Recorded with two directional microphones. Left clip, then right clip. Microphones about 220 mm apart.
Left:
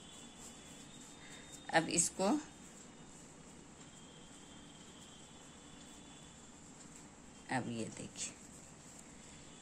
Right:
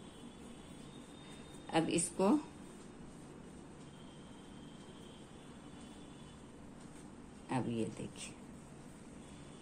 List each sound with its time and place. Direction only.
1.7 s speech: 20° left (ahead or behind)
7.4 s speech: 20° left (ahead or behind)